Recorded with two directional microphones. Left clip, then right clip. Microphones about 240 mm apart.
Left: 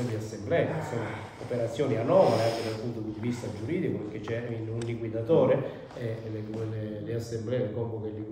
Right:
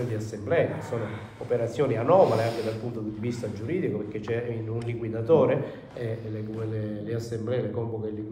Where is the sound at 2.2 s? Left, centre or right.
Left.